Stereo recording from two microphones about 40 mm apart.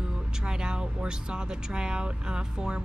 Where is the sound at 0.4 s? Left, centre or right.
Centre.